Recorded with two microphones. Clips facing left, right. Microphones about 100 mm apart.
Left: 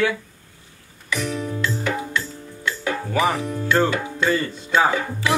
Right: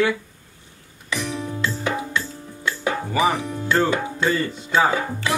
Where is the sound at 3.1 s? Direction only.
10° right (ahead or behind).